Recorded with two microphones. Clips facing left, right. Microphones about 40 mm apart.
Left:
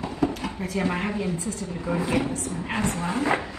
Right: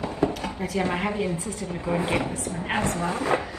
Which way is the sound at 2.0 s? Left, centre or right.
Right.